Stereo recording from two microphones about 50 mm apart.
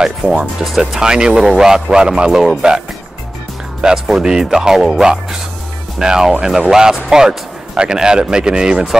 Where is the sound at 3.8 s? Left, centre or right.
Centre.